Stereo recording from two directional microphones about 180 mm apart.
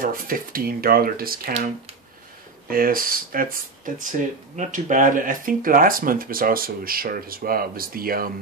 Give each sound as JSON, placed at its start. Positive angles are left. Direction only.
{"t": 0.0, "sound": "speech", "side_deg": -50}
{"t": 2.7, "sound": "speech", "side_deg": -50}